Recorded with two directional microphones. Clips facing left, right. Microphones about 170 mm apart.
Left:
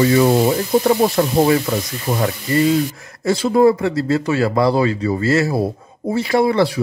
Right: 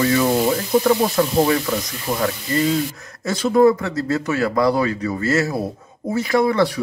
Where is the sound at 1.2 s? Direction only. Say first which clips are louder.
Left 1 dB; 30° left (ahead or behind).